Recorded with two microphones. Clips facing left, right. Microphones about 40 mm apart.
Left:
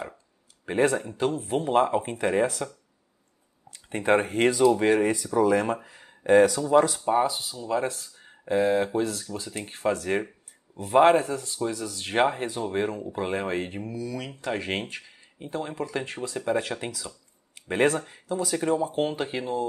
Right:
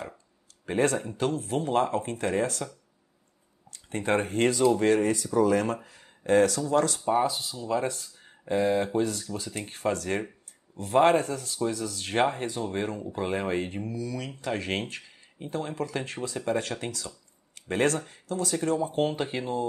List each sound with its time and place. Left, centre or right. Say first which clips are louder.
0.7 s speech: left 2 dB; centre
3.7 s speech: left 4 dB; centre
18.9 s speech: even; centre